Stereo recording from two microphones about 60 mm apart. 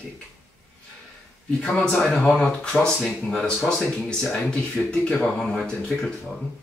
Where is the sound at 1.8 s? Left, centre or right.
Centre.